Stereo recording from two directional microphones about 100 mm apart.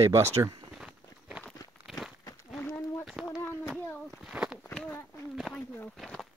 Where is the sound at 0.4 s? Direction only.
35° right (ahead or behind).